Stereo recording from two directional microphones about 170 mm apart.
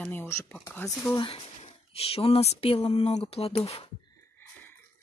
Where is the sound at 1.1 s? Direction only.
30° left (ahead or behind).